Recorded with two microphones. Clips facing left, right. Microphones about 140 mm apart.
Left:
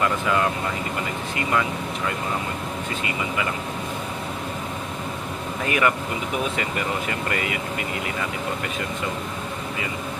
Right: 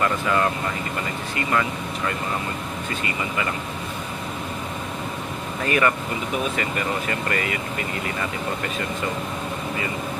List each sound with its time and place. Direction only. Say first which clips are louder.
1.5 s speech: even; 15° left (ahead or behind)
5.7 s speech: right 1 dB; 10° left (ahead or behind)
7.1 s speech: right 1 dB; 15° left (ahead or behind)